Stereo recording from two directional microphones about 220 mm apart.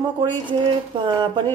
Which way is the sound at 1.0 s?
20° right (ahead or behind).